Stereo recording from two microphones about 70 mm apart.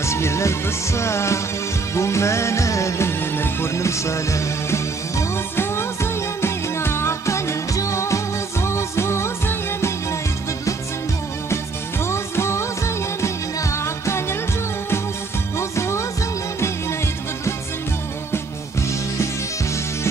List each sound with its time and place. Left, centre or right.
0.0 s music: left
11.5 s music: left
15.7 s music: left